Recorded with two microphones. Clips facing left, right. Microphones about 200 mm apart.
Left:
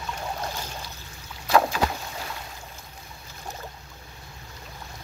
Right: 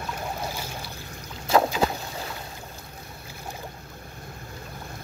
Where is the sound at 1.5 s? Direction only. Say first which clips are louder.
Right 1 dB; 25° right (ahead or behind).